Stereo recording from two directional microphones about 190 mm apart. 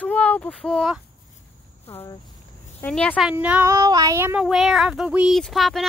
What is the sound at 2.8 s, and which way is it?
Child singing, 5° left (ahead or behind).